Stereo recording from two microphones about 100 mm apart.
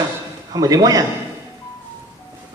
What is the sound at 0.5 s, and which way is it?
Speech, 35° right (ahead or behind).